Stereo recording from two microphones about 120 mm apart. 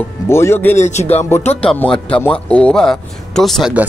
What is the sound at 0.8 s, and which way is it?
Speech, 70° left (ahead or behind).